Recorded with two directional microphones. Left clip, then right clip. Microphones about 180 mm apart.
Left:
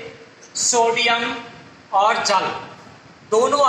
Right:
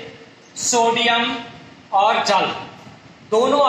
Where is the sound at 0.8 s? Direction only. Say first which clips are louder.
Right 1 dB; 20° right (ahead or behind).